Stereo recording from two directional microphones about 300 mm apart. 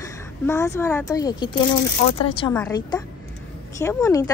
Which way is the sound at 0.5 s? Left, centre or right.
Centre.